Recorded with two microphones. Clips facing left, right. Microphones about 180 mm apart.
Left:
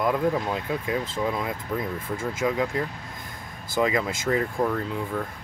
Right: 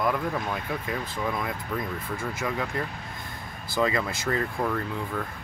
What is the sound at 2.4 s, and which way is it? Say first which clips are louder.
Speech: left 6 dB; 10° left (ahead or behind).